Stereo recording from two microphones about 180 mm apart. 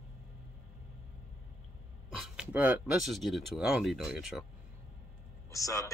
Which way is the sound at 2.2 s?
5° right (ahead or behind).